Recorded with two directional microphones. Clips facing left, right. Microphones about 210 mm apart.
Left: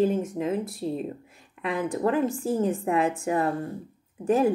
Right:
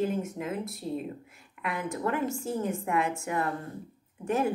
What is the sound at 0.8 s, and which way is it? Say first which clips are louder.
Speech: left 3 dB; 65° left (ahead or behind).